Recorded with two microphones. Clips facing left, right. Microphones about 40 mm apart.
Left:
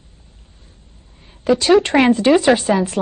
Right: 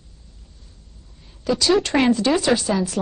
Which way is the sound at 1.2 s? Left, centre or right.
Left.